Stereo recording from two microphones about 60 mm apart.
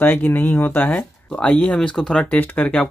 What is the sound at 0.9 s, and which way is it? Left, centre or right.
Speech, left.